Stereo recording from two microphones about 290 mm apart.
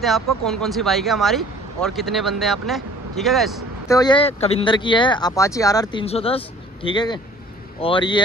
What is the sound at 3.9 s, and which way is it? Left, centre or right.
Speech, centre.